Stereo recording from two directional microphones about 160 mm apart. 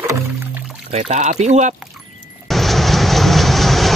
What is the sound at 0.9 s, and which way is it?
Speech, 45° right (ahead or behind).